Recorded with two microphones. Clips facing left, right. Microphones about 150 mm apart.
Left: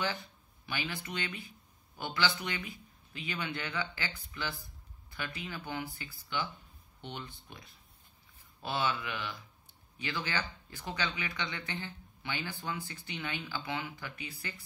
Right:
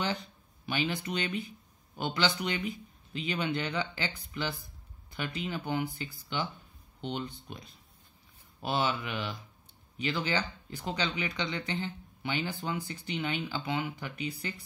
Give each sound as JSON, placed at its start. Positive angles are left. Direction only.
{"t": 0.7, "sound": "speech", "side_deg": -20}